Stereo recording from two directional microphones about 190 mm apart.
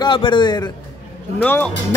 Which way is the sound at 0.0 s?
25° left (ahead or behind).